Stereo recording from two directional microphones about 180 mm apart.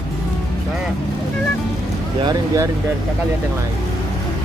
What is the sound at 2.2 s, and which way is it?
Speech, 20° right (ahead or behind).